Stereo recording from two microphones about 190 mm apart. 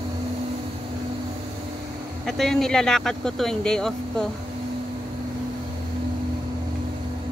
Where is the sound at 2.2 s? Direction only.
Centre (ahead or behind).